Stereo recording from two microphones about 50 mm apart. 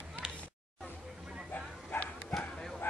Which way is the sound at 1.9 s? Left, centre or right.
Left.